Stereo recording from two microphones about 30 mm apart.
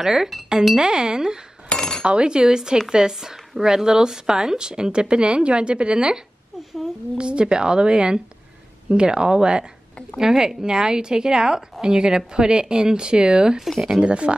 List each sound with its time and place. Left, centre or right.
0.0 s speech: centre
0.7 s speech: right
1.8 s cutlery: left
2.0 s speech: right